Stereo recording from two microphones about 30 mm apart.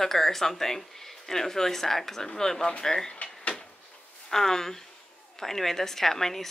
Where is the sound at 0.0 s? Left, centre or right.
Centre.